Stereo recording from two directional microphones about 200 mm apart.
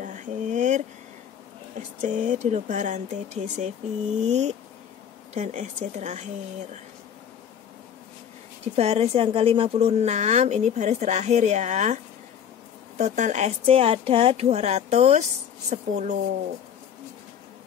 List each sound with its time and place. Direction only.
0.0 s a sound: 40° right (ahead or behind)
1.8 s speech: 35° right (ahead or behind)
8.7 s speech: 30° right (ahead or behind)